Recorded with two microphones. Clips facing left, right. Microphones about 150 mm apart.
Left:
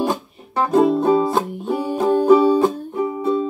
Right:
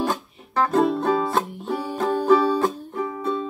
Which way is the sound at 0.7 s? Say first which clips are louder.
Left 6 dB; 5° left (ahead or behind).